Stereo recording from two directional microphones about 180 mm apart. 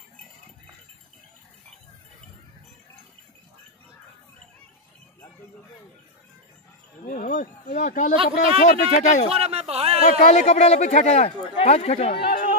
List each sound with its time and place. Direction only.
7.1 s speech: 45° left (ahead or behind)
9.3 s speech: 35° right (ahead or behind)
10.0 s speech: 45° left (ahead or behind)